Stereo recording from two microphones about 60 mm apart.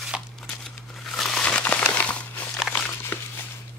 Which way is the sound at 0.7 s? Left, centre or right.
Centre.